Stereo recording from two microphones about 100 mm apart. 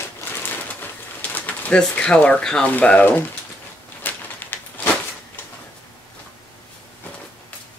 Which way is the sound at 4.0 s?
20° left (ahead or behind).